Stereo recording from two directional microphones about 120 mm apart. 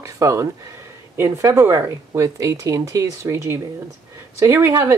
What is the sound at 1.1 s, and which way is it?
Speech, 20° right (ahead or behind).